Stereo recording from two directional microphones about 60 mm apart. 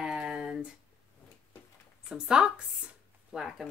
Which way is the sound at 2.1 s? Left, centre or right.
Centre.